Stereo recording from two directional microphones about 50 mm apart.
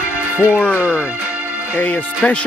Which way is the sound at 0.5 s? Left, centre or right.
Left.